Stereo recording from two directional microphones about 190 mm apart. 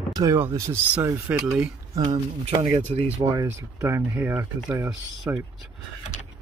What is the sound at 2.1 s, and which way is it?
Speech, 35° right (ahead or behind).